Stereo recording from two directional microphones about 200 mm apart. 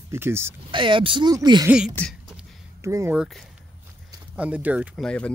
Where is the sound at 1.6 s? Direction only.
5° right (ahead or behind).